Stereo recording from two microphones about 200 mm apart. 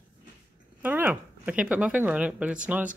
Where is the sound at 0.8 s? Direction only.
10° right (ahead or behind).